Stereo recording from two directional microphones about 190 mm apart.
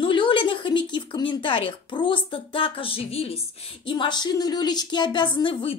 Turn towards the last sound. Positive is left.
turn(degrees=25)  # may be behind; listen again after turning